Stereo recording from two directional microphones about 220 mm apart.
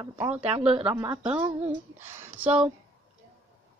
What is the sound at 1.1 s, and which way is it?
Speech, 5° right (ahead or behind).